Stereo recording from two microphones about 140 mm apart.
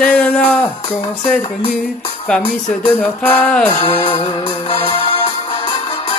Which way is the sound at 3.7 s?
35° left (ahead or behind).